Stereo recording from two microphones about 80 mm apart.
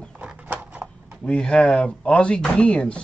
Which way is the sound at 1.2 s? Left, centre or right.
Centre.